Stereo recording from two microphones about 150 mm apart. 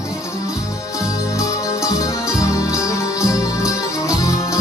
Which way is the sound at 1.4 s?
20° left (ahead or behind).